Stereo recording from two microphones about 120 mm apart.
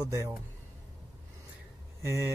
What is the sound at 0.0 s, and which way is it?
Speech, 25° right (ahead or behind).